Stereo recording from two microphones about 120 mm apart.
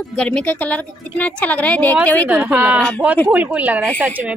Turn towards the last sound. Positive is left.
turn(degrees=-15)  # may be behind; listen again after turning